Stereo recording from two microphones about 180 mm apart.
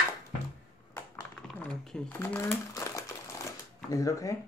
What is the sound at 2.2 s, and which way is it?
Speech, 15° left (ahead or behind).